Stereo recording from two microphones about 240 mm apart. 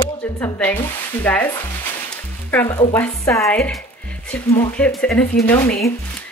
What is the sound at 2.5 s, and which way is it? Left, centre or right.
Speech, centre.